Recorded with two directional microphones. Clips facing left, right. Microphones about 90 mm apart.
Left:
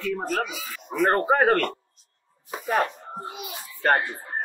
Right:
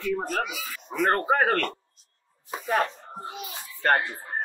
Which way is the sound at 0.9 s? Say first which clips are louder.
Left 2 dB; 10° left (ahead or behind).